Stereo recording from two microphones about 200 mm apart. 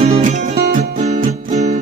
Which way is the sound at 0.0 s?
35° right (ahead or behind).